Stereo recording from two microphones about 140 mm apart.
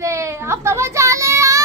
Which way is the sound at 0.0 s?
20° right (ahead or behind).